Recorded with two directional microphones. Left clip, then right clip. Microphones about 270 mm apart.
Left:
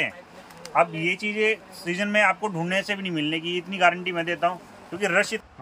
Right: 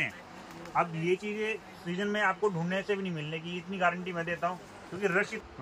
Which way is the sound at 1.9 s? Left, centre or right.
Left.